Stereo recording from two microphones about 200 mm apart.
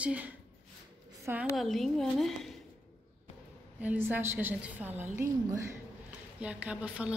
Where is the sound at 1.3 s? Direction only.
5° right (ahead or behind).